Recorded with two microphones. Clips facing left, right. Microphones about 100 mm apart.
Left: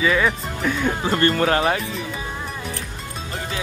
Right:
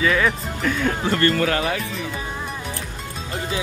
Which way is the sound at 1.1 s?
30° left (ahead or behind).